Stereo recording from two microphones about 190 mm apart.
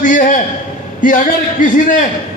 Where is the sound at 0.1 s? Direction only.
40° left (ahead or behind).